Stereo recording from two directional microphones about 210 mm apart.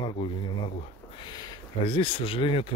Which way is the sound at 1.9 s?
25° left (ahead or behind).